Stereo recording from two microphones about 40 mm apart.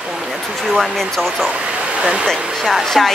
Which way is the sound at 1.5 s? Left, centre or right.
Right.